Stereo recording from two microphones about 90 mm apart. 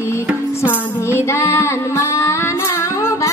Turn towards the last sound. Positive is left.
turn(degrees=35)  # may be behind; listen again after turning